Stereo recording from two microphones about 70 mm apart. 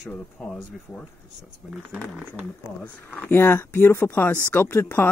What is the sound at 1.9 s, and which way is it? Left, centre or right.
Speech, right.